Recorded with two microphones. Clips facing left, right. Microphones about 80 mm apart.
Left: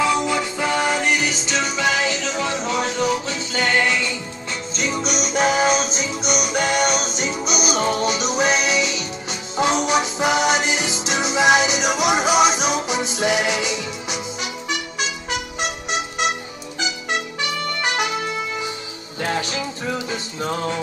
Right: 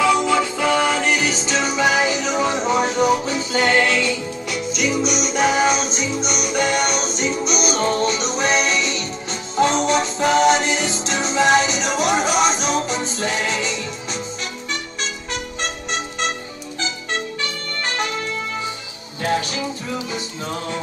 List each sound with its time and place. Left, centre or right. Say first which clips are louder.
0.0 s music: right 3 dB; centre
1.4 s music: right 3 dB; centre
3.8 s music: right 2 dB; centre
4.1 s music: right 4 dB; centre